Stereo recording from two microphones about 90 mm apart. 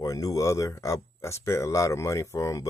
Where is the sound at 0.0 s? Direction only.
40° left (ahead or behind).